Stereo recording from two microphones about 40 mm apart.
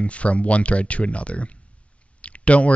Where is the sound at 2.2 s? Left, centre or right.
Left.